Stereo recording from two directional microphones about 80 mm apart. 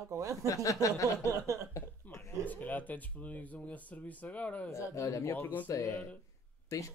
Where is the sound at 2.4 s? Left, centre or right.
Left.